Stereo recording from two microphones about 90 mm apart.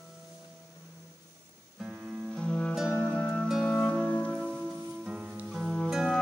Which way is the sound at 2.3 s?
10° left (ahead or behind).